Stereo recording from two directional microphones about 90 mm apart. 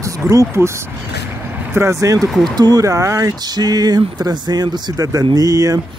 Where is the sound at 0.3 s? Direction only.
35° right (ahead or behind).